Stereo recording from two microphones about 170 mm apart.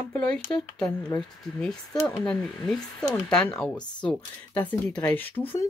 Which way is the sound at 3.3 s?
5° left (ahead or behind).